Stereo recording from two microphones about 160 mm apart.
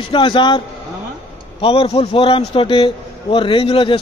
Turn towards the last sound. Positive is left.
turn(degrees=35)  # may be behind; listen again after turning